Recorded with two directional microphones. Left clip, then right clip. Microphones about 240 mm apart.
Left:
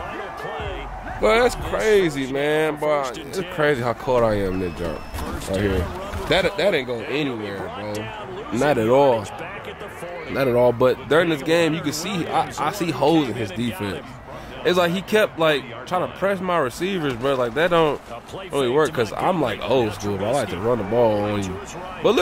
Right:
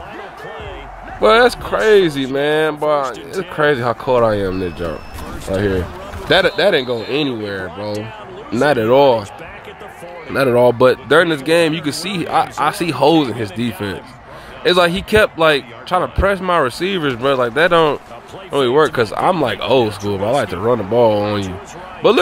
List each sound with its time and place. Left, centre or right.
1.2 s a man's voice: centre
3.0 s speech: centre
3.5 s a man's voice: centre
5.5 s a man's voice: centre
10.3 s a man's voice: centre